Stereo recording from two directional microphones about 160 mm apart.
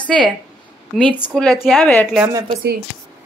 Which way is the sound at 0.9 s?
10° left (ahead or behind).